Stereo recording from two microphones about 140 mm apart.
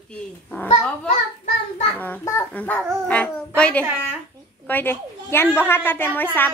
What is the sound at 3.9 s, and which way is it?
Speech, 15° right (ahead or behind).